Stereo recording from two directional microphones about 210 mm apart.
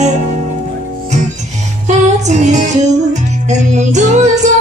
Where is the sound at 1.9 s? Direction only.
35° right (ahead or behind).